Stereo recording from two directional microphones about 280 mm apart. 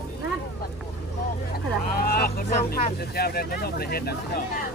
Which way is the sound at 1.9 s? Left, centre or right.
Left.